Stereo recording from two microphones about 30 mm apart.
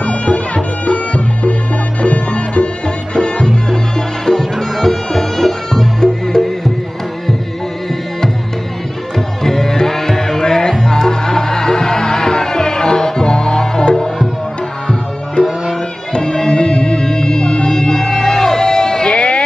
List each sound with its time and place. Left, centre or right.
0.0 s music: left
3.2 s music: left
4.3 s music: centre
9.4 s music: centre
16.2 s music: left